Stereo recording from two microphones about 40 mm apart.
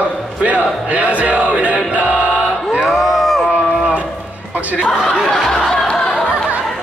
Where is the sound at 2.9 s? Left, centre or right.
Centre.